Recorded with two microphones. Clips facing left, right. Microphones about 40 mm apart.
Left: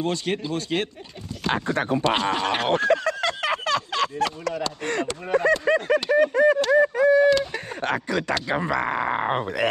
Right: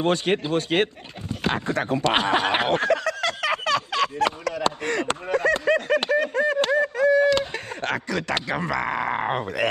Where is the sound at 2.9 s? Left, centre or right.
Left.